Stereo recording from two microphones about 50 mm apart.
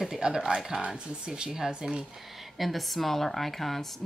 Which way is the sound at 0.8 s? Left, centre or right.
Centre.